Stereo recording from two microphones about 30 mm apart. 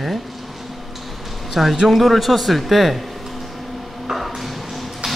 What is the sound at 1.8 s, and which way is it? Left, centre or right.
A man's voice, centre.